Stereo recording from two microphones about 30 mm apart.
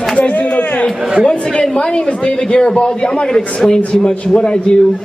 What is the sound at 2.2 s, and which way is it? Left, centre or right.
A man's voice, left.